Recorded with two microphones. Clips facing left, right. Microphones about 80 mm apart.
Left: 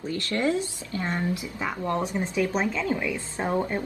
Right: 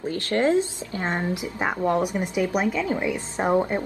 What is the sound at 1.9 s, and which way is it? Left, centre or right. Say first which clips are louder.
Speech: right 3 dB; centre.